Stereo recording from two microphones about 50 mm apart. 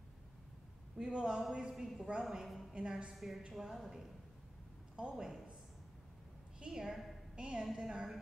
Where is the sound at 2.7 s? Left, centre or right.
Centre.